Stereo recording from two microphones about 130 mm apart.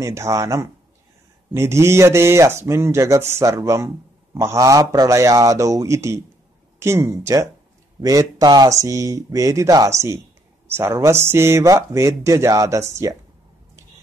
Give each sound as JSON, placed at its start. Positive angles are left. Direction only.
{"t": 0.0, "sound": "speech", "side_deg": -25}